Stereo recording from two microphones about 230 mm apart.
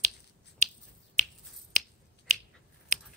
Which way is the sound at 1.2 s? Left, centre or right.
Right.